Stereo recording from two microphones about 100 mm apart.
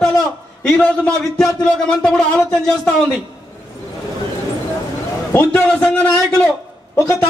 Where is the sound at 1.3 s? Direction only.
5° left (ahead or behind).